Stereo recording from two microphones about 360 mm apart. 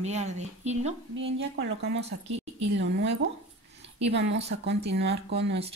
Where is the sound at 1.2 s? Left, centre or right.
Right.